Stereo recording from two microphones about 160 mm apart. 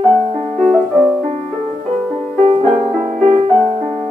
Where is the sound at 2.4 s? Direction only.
50° right (ahead or behind).